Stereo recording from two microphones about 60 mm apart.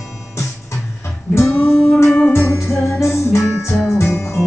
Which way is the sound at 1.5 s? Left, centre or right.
Left.